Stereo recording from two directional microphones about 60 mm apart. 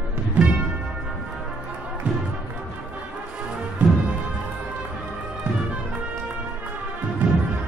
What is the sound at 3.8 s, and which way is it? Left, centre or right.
Music, right.